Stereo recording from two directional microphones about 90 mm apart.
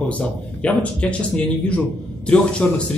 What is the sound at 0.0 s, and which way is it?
A man's voice, 15° left (ahead or behind).